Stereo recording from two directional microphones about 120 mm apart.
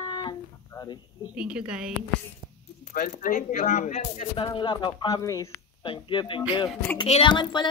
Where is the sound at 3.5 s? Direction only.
90° left.